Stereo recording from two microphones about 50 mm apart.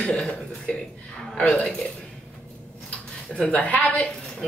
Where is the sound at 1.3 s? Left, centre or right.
Centre.